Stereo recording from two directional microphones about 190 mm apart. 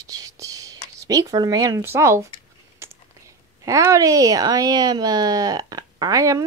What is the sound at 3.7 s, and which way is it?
Speech, 15° right (ahead or behind).